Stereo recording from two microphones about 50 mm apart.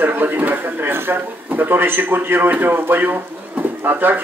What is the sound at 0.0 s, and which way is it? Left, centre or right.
Speech, right.